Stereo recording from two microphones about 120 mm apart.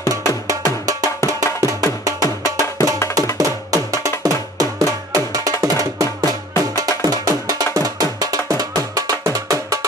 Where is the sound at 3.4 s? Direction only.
30° right (ahead or behind).